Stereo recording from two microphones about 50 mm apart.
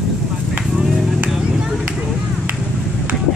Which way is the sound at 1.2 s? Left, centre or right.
Centre.